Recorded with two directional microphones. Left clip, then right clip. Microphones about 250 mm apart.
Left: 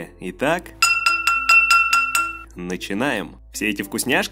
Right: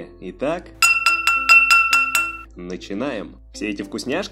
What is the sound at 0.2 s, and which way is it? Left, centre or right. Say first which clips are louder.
Speech: left 3 dB; left.